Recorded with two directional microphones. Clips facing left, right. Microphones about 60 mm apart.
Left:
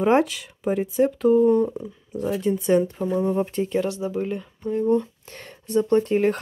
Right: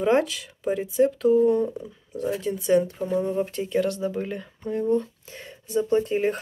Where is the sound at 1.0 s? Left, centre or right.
Left.